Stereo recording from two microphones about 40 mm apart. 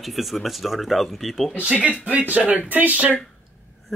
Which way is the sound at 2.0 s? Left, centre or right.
Right.